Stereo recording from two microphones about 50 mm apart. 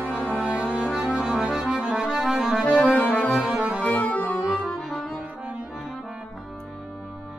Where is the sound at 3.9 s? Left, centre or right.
Left.